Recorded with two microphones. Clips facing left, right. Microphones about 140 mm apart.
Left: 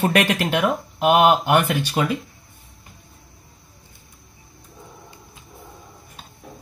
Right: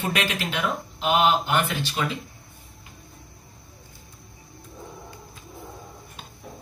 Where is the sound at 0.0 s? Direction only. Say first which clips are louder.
Left 8 dB; 60° left (ahead or behind).